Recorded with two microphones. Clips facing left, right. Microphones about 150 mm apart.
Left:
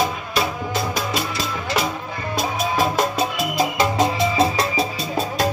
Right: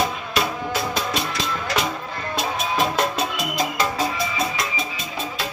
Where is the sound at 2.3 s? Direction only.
5° left (ahead or behind).